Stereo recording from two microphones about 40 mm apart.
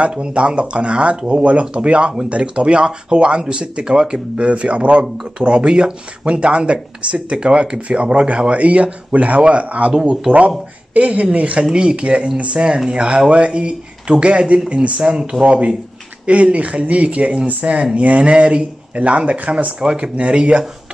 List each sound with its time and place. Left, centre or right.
0.0 s speech: right
5.0 s speech: centre
5.4 s speech: right
9.9 s speech: right
10.9 s a woman's voice: right
11.7 s speech: right
16.3 s speech: right
19.8 s speech: right